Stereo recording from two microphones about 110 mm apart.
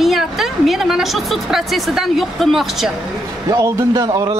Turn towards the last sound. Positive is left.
turn(degrees=-35)  # may be behind; listen again after turning